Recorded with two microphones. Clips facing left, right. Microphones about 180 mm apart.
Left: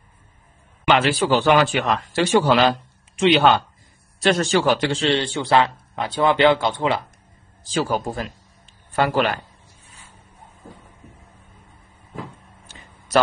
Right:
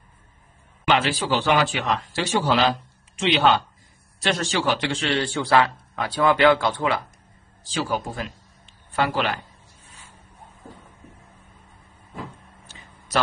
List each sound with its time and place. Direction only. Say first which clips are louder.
0.9 s a man's voice: left 4 dB; 55° left (ahead or behind)
5.0 s speech: left 3 dB; 25° left (ahead or behind)
7.6 s a man's voice: left 4 dB; 45° left (ahead or behind)